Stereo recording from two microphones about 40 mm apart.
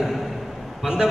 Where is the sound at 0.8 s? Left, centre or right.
Centre.